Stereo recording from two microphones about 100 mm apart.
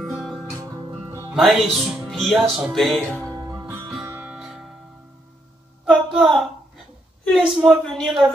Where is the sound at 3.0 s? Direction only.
15° left (ahead or behind).